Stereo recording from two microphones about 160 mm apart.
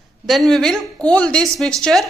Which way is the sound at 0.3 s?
Centre (ahead or behind).